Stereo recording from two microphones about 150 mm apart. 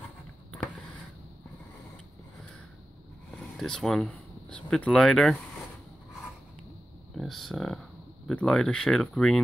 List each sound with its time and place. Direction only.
3.3 s speech: 5° left (ahead or behind)
7.2 s a sound: centre (ahead or behind)
8.3 s speech: 5° left (ahead or behind)